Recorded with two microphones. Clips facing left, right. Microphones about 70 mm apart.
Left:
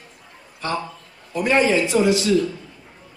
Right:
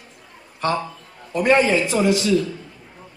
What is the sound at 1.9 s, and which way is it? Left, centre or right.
Speech, right.